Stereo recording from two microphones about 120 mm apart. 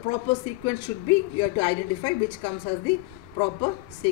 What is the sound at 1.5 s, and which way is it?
Speech, 40° left (ahead or behind).